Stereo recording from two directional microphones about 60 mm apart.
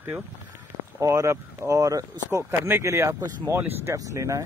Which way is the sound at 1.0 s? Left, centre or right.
Right.